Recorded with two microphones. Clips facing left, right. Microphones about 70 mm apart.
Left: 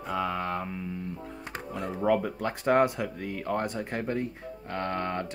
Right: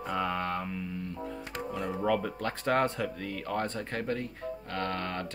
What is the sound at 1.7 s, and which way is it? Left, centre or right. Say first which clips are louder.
Speech: left 3 dB; centre.